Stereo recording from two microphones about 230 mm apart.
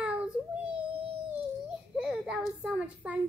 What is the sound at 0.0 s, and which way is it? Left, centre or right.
Child singing, centre.